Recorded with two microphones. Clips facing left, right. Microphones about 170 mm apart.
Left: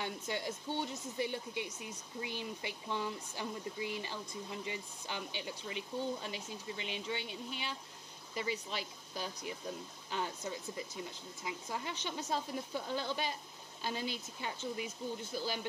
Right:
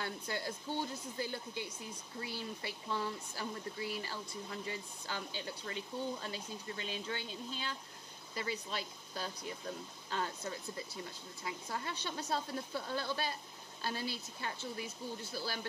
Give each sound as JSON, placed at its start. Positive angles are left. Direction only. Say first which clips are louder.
{"t": 0.0, "sound": "speech", "louder": "left 1 dB", "side_deg": 15}